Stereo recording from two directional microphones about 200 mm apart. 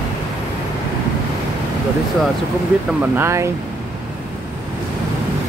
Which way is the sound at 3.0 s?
10° right (ahead or behind).